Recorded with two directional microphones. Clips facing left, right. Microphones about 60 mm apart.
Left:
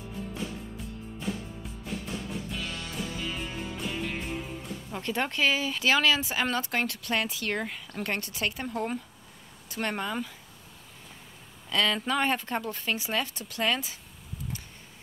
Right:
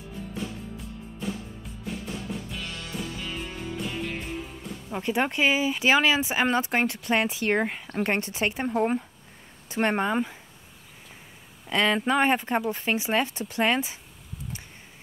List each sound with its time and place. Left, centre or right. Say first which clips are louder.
2.5 s music: even; centre
4.9 s speech: right 5 dB; centre
11.7 s speech: right 4 dB; right